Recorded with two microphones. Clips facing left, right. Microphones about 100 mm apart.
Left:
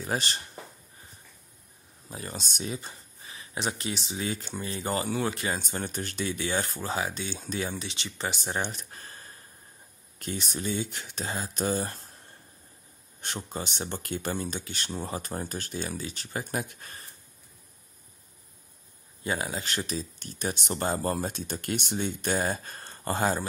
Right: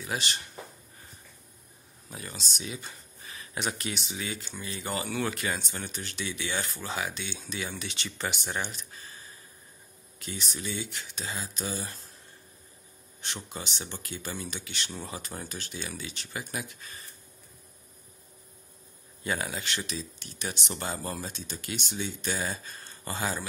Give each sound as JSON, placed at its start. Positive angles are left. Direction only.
{"t": 0.0, "sound": "speech", "side_deg": 40}
{"t": 2.0, "sound": "speech", "side_deg": 30}
{"t": 2.3, "sound": "speech", "side_deg": 50}
{"t": 3.3, "sound": "speech", "side_deg": 25}
{"t": 4.4, "sound": "speech", "side_deg": 45}
{"t": 5.6, "sound": "speech", "side_deg": 45}
{"t": 8.6, "sound": "speech", "side_deg": 55}
{"t": 13.2, "sound": "speech", "side_deg": 50}
{"t": 19.2, "sound": "speech", "side_deg": 30}
{"t": 19.6, "sound": "speech", "side_deg": 40}